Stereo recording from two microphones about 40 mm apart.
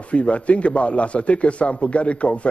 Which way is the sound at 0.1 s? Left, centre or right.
Left.